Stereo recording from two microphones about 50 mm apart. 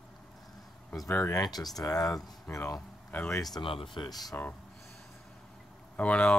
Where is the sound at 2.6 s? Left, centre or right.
Left.